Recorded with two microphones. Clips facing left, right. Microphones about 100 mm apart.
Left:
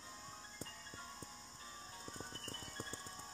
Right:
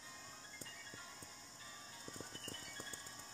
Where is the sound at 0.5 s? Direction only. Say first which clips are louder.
Left 3 dB; 40° left (ahead or behind).